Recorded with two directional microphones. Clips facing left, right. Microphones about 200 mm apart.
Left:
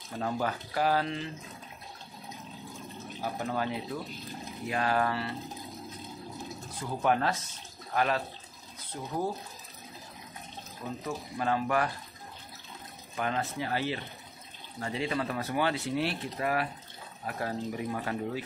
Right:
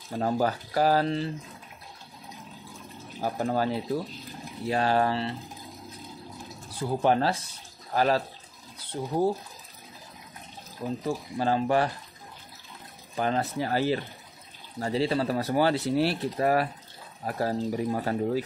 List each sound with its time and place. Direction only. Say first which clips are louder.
0.1 s speech: right 6 dB; 35° right (ahead or behind)
3.2 s speech: right 6 dB; 40° right (ahead or behind)
6.7 s speech: right 4 dB; 30° right (ahead or behind)
11.1 s speech: right 4 dB; 30° right (ahead or behind)
13.1 s speech: right 5 dB; 35° right (ahead or behind)